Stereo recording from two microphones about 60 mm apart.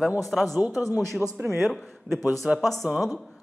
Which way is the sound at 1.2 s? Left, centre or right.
Right.